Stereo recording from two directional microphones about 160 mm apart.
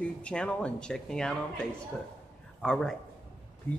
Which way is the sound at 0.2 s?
5° left (ahead or behind).